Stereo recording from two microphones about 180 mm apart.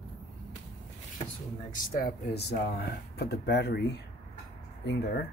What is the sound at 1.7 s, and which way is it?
Speech, 50° left (ahead or behind).